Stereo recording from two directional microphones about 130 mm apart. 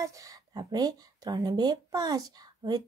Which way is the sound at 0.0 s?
25° right (ahead or behind).